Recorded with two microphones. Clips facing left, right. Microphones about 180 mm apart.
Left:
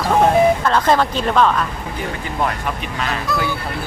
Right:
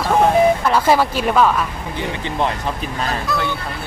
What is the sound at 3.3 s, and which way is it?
Speech, centre (ahead or behind).